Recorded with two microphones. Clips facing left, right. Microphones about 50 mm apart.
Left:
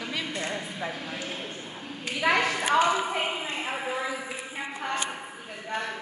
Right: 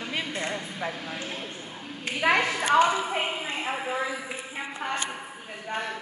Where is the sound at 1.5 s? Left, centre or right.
Centre.